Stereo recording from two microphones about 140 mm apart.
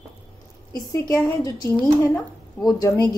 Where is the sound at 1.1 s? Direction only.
25° left (ahead or behind).